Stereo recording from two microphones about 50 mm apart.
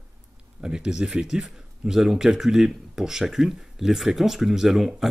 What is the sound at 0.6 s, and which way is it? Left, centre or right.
Speech, centre.